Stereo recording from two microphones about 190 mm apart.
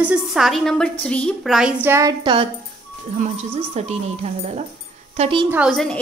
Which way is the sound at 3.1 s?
40° right (ahead or behind).